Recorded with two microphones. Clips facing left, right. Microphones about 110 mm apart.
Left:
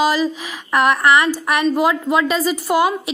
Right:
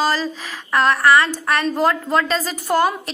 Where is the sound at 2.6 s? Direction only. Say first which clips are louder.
Right 1 dB; 5° left (ahead or behind).